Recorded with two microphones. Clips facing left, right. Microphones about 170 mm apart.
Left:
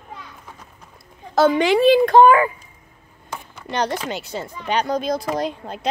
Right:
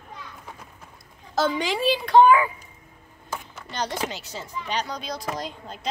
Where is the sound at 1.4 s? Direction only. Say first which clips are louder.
Left 9 dB; 65° left (ahead or behind); by 2.5 s 45° left (ahead or behind).